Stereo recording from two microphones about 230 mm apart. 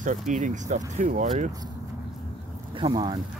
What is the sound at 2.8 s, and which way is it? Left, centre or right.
Speech, centre.